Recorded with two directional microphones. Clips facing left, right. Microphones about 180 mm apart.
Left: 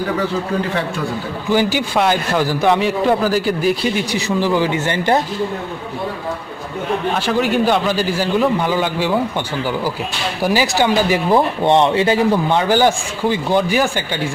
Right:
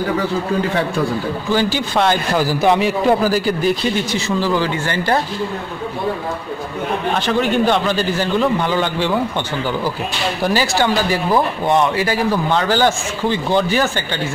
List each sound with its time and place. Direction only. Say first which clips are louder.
1.5 s speech: left 2 dB; 15° left (ahead or behind)
2.3 s a man's voice: right 1 dB; 5° right (ahead or behind)
3.9 s speech: even; 15° left (ahead or behind)
7.2 s speech: right 1 dB; 10° left (ahead or behind)
10.4 s speech: left 2 dB; 15° left (ahead or behind)